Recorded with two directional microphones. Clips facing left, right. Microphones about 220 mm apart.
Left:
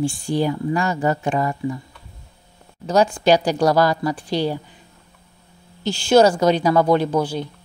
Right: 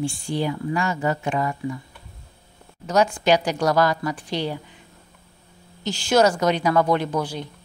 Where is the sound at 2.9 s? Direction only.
30° left (ahead or behind).